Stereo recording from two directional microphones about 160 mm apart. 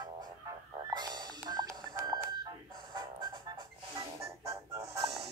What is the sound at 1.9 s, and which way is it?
Telephone dialing, 20° right (ahead or behind).